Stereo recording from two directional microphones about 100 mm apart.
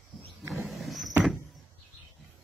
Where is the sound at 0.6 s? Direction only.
Centre (ahead or behind).